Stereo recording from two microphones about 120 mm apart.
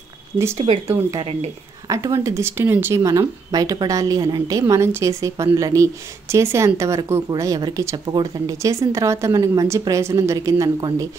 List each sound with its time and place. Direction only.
0.6 s speech: 55° right (ahead or behind)
1.9 s speech: 30° right (ahead or behind)